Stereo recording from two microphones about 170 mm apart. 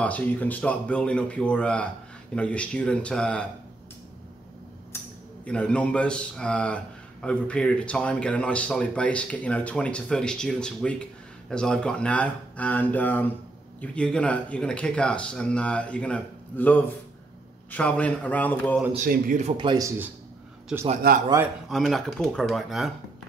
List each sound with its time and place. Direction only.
0.0 s a man's voice: 10° left (ahead or behind)
4.9 s a sound: 15° left (ahead or behind)
5.4 s a man's voice: 5° left (ahead or behind)
19.0 s speech: 55° right (ahead or behind)
19.4 s speech: 30° right (ahead or behind)
21.0 s speech: 65° right (ahead or behind)
21.6 s speech: centre (ahead or behind)